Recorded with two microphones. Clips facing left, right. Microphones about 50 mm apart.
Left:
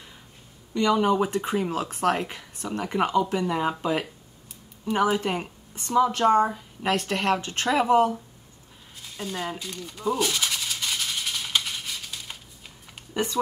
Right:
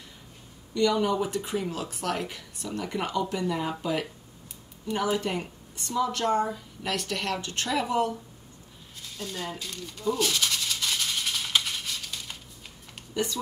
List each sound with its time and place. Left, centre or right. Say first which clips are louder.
0.7 s speech: left 3 dB; left
5.1 s speech: left 2 dB; left
9.0 s a sound: left 3 dB; centre
9.3 s speech: left 4 dB; centre
9.6 s music: left 3 dB; centre
13.1 s speech: left 2 dB; left